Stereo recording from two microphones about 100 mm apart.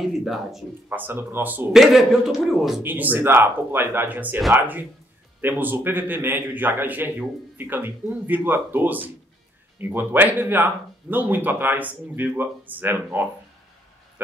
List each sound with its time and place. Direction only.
0.0 s a man's voice: centre (ahead or behind)
0.8 s speech: 20° right (ahead or behind)
1.7 s a man's voice: centre (ahead or behind)
2.8 s speech: 20° right (ahead or behind)